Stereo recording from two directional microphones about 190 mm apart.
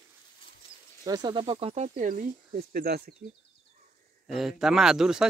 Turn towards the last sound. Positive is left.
turn(degrees=-5)  # may be behind; listen again after turning